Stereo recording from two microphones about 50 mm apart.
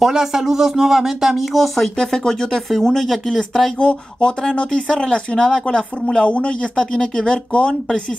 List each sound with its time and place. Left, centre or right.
0.0 s speech: centre
3.7 s speech: left
6.2 s speech: left